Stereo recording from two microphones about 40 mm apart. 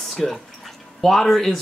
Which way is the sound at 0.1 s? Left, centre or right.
Centre.